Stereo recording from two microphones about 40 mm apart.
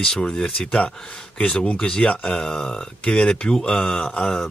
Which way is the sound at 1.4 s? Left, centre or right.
Left.